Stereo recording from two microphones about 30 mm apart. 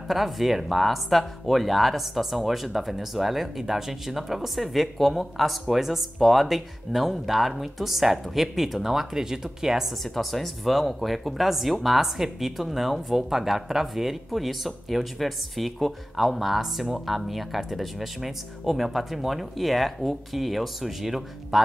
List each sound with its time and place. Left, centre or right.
0.1 s speech: centre
9.2 s speech: centre
10.1 s speech: centre